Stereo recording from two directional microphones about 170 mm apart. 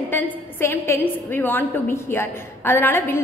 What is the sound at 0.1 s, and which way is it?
A woman's voice, 15° left (ahead or behind).